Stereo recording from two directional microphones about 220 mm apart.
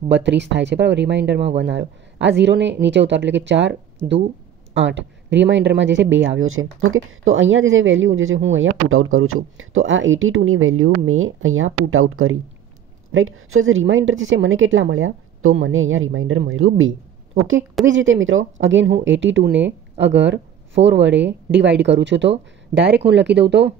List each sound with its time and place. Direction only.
0.1 s speech: 50° right (ahead or behind)